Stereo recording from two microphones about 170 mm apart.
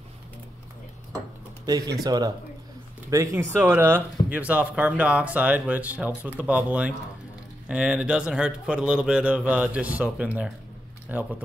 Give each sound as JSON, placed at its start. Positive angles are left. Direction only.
{"t": 2.0, "sound": "speech", "side_deg": -25}